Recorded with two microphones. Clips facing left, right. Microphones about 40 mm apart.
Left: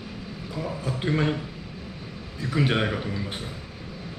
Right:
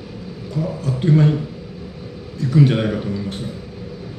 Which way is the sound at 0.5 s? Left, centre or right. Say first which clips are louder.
Right 7 dB; centre.